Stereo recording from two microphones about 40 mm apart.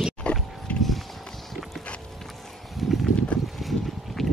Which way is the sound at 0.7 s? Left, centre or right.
Left.